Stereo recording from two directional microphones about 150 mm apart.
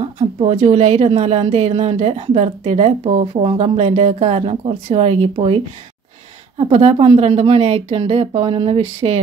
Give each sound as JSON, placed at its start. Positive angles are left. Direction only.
{"t": 0.0, "sound": "a woman's voice", "side_deg": -40}
{"t": 6.6, "sound": "a woman's voice", "side_deg": -45}